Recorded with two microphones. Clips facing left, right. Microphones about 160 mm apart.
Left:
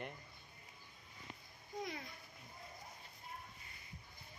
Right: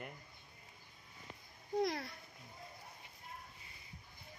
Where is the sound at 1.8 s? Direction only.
80° right.